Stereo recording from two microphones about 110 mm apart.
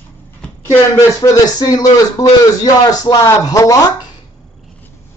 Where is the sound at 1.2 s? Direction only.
35° left (ahead or behind).